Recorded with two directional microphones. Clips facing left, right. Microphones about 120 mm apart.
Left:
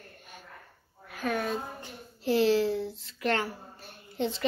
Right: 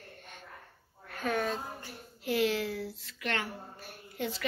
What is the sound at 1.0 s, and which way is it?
Speech, 5° left (ahead or behind).